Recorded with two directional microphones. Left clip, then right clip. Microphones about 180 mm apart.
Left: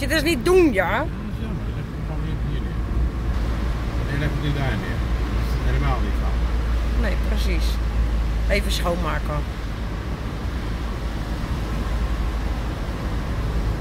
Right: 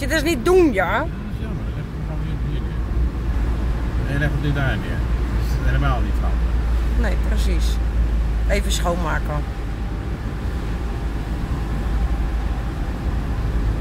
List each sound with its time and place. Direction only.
0.0 s speech: 10° right (ahead or behind)
8.5 s speech: 10° right (ahead or behind)